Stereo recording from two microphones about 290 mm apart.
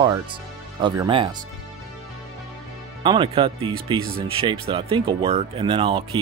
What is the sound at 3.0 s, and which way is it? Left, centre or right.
Speech, centre.